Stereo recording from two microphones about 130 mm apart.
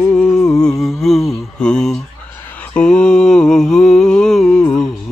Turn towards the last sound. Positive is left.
turn(degrees=10)  # may be behind; listen again after turning